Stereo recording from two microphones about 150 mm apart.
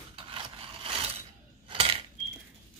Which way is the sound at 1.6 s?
35° right (ahead or behind).